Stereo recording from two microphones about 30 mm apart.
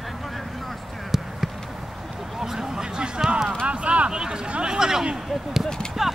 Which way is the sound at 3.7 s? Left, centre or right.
Right.